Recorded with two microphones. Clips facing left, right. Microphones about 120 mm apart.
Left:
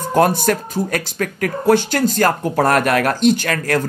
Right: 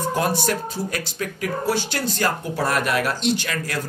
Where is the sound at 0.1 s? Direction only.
50° left (ahead or behind).